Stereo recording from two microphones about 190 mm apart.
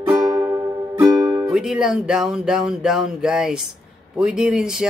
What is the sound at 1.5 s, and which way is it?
Speech, 5° right (ahead or behind).